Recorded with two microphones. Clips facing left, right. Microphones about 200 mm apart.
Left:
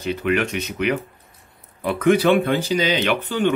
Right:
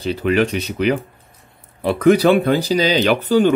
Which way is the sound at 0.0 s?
35° right (ahead or behind).